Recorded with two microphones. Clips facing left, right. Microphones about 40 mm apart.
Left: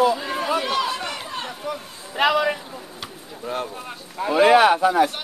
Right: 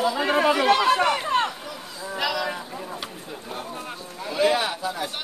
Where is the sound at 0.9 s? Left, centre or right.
Right.